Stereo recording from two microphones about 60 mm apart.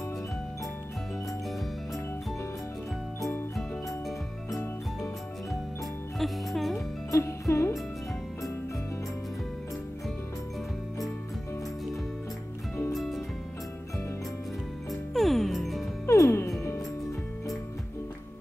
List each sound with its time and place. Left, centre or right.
6.1 s music: centre
7.1 s music: left
12.9 s music: centre
14.9 s music: centre
16.1 s music: left